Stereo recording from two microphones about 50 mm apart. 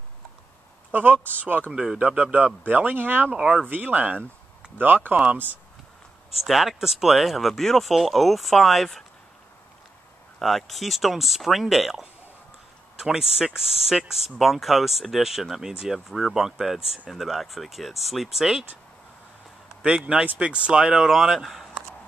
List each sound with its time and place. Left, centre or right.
0.9 s speech: right
1.7 s speech: centre
2.0 s speech: right
3.3 s speech: centre
3.6 s speech: right
6.3 s speech: centre
10.4 s speech: centre
20.3 s speech: right
21.1 s speech: centre